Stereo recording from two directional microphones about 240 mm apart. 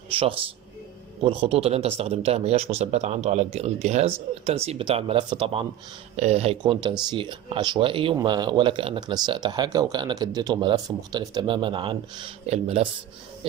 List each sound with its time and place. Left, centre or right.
0.1 s speech: right
1.5 s speech: right